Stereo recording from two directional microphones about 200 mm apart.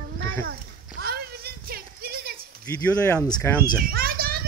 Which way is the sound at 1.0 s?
50° right (ahead or behind).